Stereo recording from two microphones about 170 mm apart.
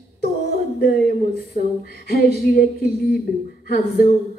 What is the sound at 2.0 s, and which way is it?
Speech, 65° left (ahead or behind).